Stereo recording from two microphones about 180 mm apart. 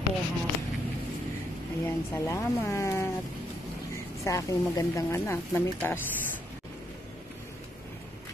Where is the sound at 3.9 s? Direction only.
15° left (ahead or behind).